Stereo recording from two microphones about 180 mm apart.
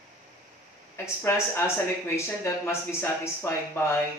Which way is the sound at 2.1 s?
15° left (ahead or behind).